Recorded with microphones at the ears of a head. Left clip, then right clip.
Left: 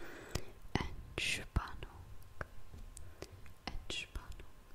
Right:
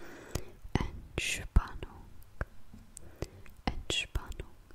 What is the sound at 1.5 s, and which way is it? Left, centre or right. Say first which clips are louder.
Whispering: right 4 dB; right.